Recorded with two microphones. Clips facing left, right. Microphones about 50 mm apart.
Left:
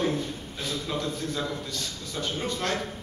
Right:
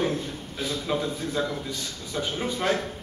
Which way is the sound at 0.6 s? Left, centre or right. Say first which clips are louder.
Right 3 dB; centre.